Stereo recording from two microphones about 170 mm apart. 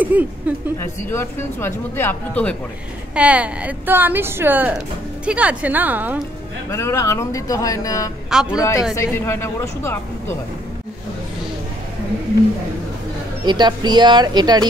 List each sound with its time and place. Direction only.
0.0 s speech: 10° right (ahead or behind)
0.7 s speech: 15° left (ahead or behind)
3.2 s a woman's voice: 5° right (ahead or behind)
6.7 s speech: 15° left (ahead or behind)
8.3 s a man's voice: 5° right (ahead or behind)
8.5 s speech: 15° left (ahead or behind)
13.5 s speech: 25° right (ahead or behind)